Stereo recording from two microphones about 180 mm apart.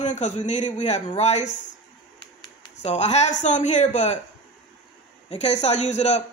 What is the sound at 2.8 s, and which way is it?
A man's voice, 40° left (ahead or behind).